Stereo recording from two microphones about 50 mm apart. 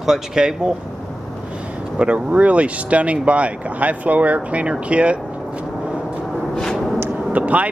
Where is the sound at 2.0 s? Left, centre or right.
Right.